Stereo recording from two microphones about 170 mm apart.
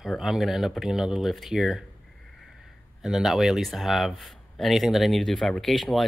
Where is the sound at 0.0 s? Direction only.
Centre (ahead or behind).